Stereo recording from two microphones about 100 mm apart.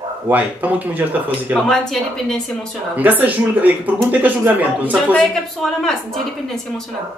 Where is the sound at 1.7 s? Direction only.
5° left (ahead or behind).